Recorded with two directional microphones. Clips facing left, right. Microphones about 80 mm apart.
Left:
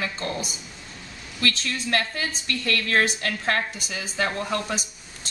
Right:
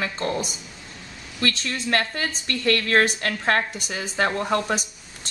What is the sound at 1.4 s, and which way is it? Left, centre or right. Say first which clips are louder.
A woman's voice: right 1 dB; right.